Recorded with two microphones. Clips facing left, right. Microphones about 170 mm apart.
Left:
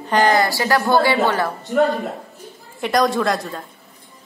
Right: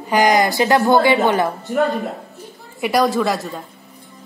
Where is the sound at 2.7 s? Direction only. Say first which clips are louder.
Right 1 dB; 10° right (ahead or behind).